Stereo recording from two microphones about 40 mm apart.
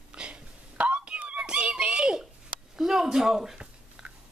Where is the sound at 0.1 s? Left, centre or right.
Right.